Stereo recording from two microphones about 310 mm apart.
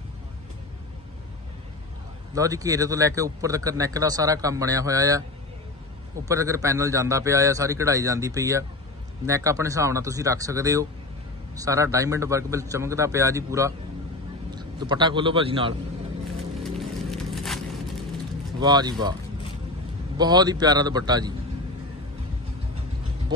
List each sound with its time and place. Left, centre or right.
2.3 s speech: centre
6.2 s a man's voice: centre
16.3 s vehicle: centre
18.6 s speech: centre
20.2 s speech: centre